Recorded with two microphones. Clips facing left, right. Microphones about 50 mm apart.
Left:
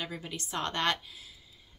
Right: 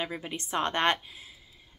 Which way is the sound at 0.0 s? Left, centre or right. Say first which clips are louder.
Right 4 dB; right.